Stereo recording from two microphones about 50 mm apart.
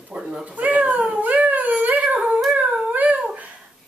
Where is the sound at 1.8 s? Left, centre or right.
Right.